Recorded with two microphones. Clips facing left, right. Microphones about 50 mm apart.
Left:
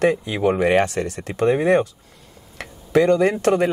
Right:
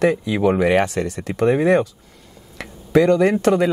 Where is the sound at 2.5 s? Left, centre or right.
Right.